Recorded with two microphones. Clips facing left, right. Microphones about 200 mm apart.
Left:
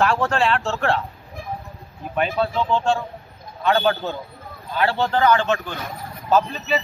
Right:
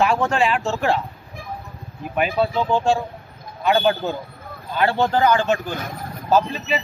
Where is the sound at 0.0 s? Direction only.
5° right (ahead or behind).